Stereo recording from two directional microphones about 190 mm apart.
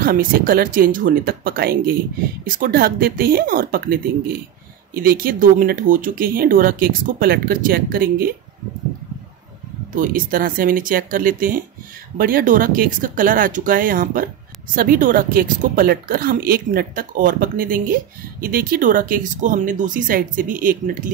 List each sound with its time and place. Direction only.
0.0 s a woman's voice: 50° right (ahead or behind)
9.9 s a woman's voice: 45° right (ahead or behind)